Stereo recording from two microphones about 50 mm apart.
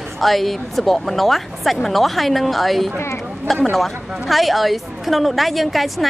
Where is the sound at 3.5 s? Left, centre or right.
Centre.